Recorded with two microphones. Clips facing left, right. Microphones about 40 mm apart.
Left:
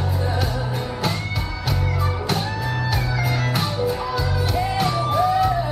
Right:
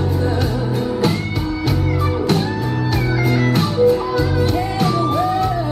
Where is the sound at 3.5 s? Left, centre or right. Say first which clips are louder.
Right 8 dB; centre.